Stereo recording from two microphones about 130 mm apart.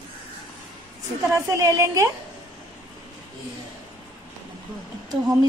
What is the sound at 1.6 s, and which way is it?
Speech, 25° right (ahead or behind).